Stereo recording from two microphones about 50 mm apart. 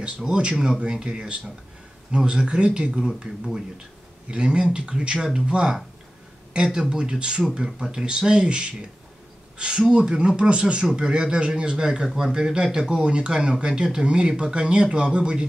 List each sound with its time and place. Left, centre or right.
0.0 s speech: centre